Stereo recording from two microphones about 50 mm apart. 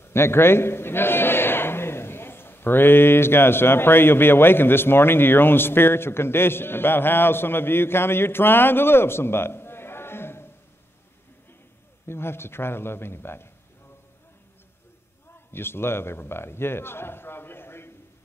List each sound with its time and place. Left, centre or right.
0.0 s a man's voice: left
12.1 s a man's voice: left
15.5 s a man's voice: left